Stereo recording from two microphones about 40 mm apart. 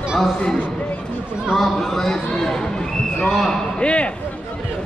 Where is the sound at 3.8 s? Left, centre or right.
Left.